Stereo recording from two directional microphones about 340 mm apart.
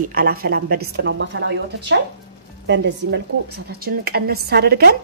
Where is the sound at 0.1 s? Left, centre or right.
Right.